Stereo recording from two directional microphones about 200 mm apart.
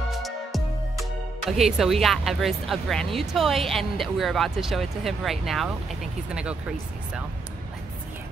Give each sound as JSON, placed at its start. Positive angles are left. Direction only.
{"t": 0.1, "sound": "music", "side_deg": 0}
{"t": 1.6, "sound": "a woman's voice", "side_deg": 0}